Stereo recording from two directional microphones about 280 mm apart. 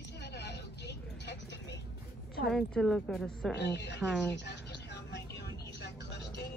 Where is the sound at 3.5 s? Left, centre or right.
Left.